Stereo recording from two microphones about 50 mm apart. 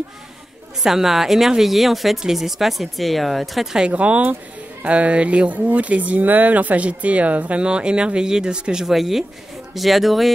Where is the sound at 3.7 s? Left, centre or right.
Right; by 10.3 s centre.